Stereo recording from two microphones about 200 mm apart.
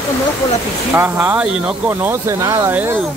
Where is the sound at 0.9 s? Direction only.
10° right (ahead or behind).